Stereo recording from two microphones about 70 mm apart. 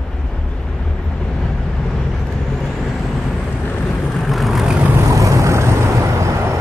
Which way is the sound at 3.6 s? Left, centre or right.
Left.